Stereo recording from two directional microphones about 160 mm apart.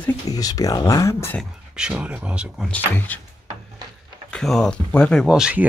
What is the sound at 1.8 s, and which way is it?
Speech, 5° right (ahead or behind).